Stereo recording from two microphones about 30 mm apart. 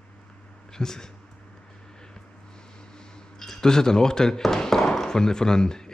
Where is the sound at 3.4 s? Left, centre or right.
Centre.